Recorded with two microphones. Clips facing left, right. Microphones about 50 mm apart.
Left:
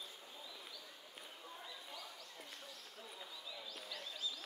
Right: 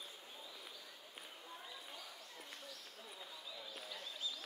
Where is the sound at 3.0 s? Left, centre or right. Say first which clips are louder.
Left 2 dB; centre.